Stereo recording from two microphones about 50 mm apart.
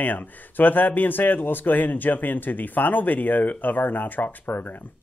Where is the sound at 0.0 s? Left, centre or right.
Left.